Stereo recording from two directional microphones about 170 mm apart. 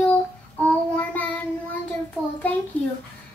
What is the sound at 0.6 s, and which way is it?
Child singing, 10° left (ahead or behind).